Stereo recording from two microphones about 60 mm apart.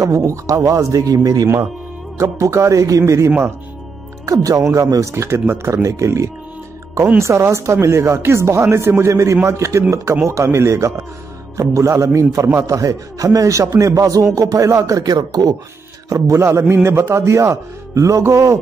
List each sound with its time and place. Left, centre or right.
0.0 s a man's voice: right
2.1 s a man's voice: right
3.3 s speech: right
4.3 s a man's voice: right
16.3 s a man's voice: right